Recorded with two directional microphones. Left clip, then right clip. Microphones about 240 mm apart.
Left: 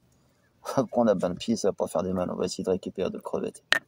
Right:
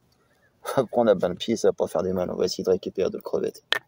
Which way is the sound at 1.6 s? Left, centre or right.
Centre.